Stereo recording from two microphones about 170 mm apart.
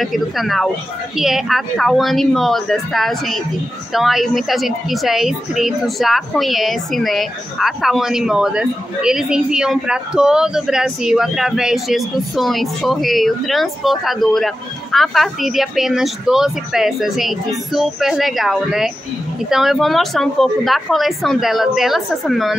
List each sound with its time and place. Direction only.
0.0 s a woman's voice: centre (ahead or behind)